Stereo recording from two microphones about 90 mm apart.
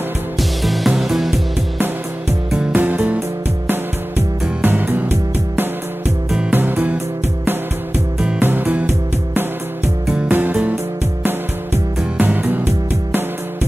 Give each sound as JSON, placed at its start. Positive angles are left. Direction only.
{"t": 0.4, "sound": "music", "side_deg": 0}
{"t": 2.7, "sound": "music", "side_deg": -20}
{"t": 4.6, "sound": "music", "side_deg": -20}
{"t": 6.5, "sound": "music", "side_deg": -20}
{"t": 8.4, "sound": "music", "side_deg": -20}
{"t": 10.0, "sound": "music", "side_deg": -5}
{"t": 11.2, "sound": "music", "side_deg": -20}